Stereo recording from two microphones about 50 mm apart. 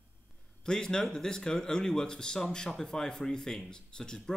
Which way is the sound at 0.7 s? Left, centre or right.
Centre.